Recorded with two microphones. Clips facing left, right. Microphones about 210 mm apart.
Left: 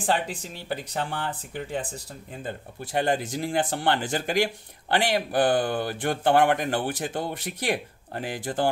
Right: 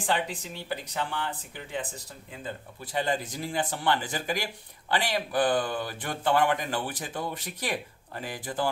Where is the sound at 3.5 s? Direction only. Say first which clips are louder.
Left 3 dB; 55° left (ahead or behind).